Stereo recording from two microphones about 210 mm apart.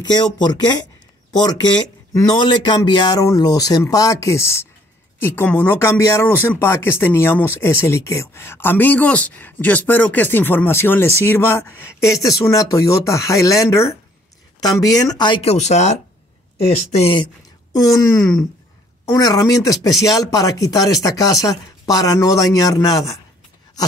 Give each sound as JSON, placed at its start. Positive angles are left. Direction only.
{"t": 0.0, "sound": "speech", "side_deg": 20}